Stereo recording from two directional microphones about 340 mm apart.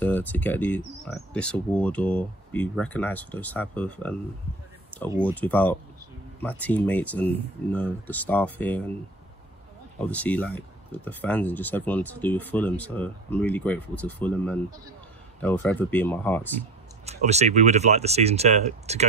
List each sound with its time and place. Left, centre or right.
0.0 s speech: centre
5.2 s speech: centre
9.9 s speech: centre
17.0 s speech: centre